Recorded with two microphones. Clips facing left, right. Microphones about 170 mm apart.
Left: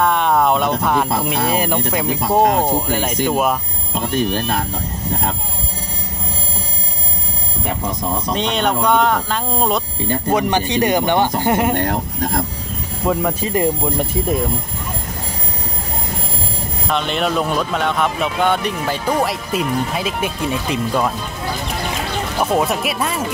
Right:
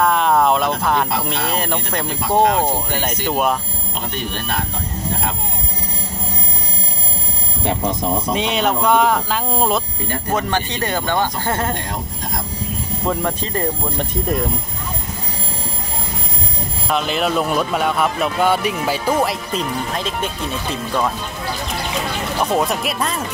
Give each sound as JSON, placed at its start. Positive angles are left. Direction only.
{"t": 0.0, "sound": "speech", "side_deg": 0}
{"t": 4.1, "sound": "speech", "side_deg": 40}
{"t": 8.3, "sound": "speech", "side_deg": -5}
{"t": 10.3, "sound": "speech", "side_deg": 15}
{"t": 11.7, "sound": "speech", "side_deg": 55}
{"t": 13.0, "sound": "speech", "side_deg": 5}
{"t": 16.9, "sound": "speech", "side_deg": 0}
{"t": 22.4, "sound": "speech", "side_deg": 0}